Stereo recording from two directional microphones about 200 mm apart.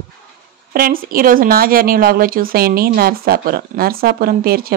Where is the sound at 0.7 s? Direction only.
45° right (ahead or behind).